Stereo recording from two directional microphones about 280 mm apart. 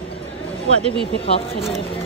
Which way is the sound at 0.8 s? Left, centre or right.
Centre.